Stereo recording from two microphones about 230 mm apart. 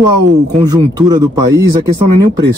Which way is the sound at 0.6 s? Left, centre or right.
Centre.